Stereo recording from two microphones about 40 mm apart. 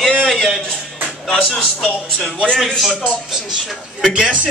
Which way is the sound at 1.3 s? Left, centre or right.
Left.